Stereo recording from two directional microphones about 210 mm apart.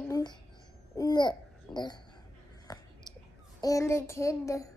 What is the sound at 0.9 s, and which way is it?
Babbling, 20° left (ahead or behind).